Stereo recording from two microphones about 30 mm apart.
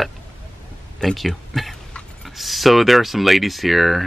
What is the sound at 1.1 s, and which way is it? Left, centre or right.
Speech, centre.